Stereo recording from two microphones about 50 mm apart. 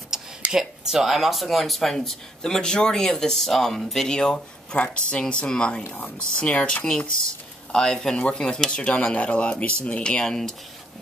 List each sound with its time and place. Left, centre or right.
0.5 s speech: centre; by 7.1 s left
7.7 s speech: centre